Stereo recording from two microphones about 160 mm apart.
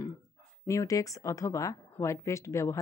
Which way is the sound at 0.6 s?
20° left (ahead or behind).